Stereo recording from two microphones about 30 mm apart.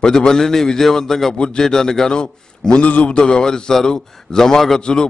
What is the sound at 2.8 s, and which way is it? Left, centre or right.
Speech, left.